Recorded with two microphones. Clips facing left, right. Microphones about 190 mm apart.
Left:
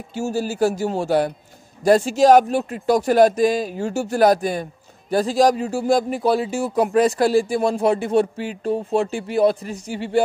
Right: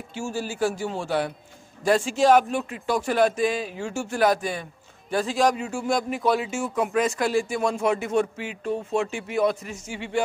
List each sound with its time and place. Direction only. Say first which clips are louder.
0.1 s speech: left 7 dB; 40° left (ahead or behind)